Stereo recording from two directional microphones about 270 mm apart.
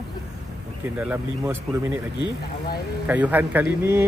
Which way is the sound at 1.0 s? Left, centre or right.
Centre.